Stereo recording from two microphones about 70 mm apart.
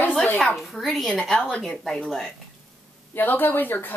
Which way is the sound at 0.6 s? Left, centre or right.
Centre.